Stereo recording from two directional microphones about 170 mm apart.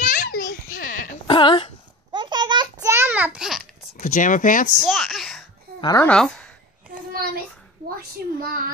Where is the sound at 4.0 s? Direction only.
50° left (ahead or behind).